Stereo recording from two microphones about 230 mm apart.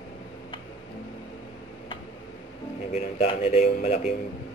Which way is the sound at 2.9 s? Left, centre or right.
Left.